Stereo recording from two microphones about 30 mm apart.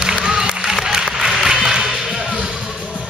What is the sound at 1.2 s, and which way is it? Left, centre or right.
Applause, centre.